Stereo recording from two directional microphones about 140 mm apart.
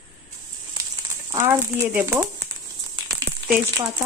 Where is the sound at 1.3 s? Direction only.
20° right (ahead or behind).